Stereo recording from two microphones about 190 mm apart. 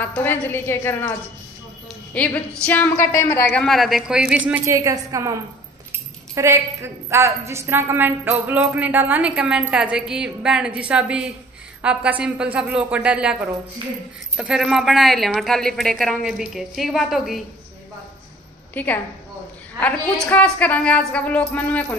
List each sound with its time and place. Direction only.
0.0 s a woman's voice: 10° left (ahead or behind)
2.1 s a woman's voice: 5° left (ahead or behind); by 5.3 s 15° right (ahead or behind)
6.3 s a woman's voice: 15° right (ahead or behind)
13.8 s speech: 25° right (ahead or behind)
14.3 s a woman's voice: 5° right (ahead or behind)
18.8 s a woman's voice: 10° left (ahead or behind)